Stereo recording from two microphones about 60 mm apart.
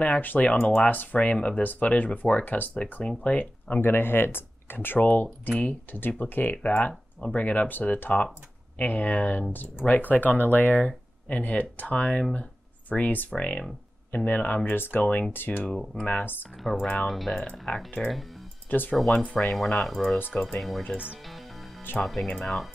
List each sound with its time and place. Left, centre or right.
0.0 s speech: left
14.1 s speech: left
15.8 s speech: centre
16.1 s speech: left
17.1 s speech: centre
17.7 s speech: left
19.5 s speech: centre
20.9 s speech: centre
22.0 s speech: centre